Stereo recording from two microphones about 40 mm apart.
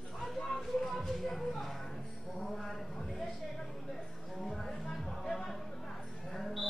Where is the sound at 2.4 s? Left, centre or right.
Centre.